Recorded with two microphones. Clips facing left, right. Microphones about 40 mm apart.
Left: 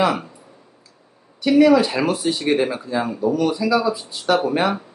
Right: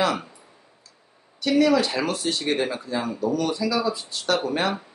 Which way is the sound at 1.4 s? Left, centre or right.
Centre.